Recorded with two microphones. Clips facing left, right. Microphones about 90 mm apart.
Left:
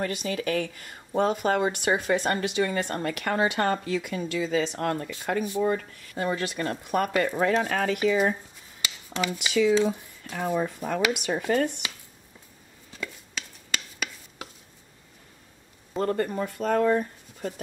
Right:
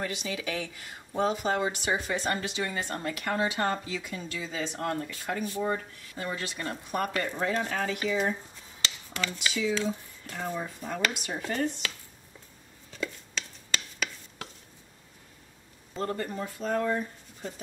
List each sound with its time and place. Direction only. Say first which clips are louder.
0.0 s speech: left 5 dB; 50° left (ahead or behind); by 5.1 s 65° left (ahead or behind)
6.1 s speech: left 7 dB; 60° left (ahead or behind)
8.8 s a sound: left 4 dB; 15° left (ahead or behind)
9.5 s speech: left 8 dB; 60° left (ahead or behind)
13.0 s chopping: right 2 dB; 5° left (ahead or behind)
15.9 s speech: left 6 dB; 50° left (ahead or behind)